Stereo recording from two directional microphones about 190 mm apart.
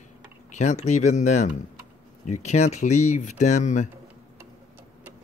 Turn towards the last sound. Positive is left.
turn(degrees=40)  # may be behind; listen again after turning